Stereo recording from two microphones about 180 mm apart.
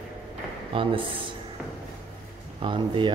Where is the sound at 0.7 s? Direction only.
30° right (ahead or behind).